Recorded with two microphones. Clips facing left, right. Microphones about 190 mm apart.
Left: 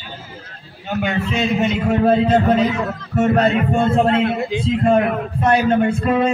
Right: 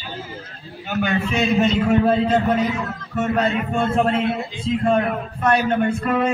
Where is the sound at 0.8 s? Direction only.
25° left (ahead or behind).